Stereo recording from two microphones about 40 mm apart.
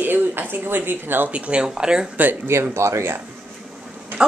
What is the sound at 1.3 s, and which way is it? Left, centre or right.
Speech, right.